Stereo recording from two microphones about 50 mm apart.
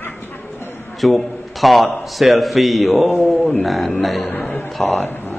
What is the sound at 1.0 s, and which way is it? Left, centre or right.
A man's voice, centre.